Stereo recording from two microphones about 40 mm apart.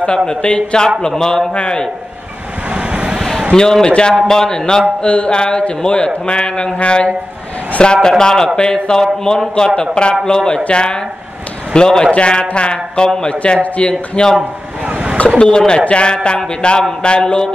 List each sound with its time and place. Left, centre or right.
0.3 s a man's voice: left
2.7 s vehicle: right
3.2 s a sound: centre
3.5 s a man's voice: centre
5.0 s a man's voice: left
14.9 s a sound: right
15.2 s speech: left